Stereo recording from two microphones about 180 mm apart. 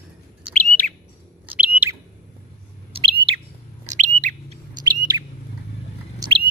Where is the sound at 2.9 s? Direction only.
30° right (ahead or behind).